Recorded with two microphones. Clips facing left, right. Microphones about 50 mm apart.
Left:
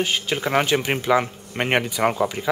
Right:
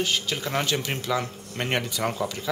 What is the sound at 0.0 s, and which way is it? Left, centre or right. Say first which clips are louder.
Speech: left 4 dB; left.